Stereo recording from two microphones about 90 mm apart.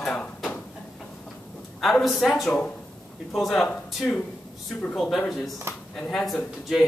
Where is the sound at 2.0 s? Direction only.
Centre (ahead or behind).